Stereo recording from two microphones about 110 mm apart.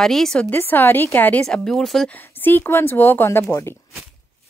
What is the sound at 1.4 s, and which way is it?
Speech, 5° left (ahead or behind).